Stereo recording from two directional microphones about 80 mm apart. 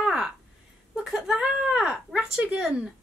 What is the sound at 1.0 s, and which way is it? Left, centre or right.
Speech, centre.